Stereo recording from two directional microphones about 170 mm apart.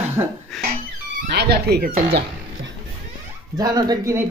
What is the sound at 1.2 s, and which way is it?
Speech, 75° right (ahead or behind).